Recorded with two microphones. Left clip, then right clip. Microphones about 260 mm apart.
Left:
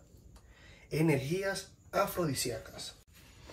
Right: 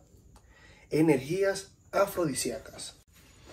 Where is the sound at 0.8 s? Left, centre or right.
Centre.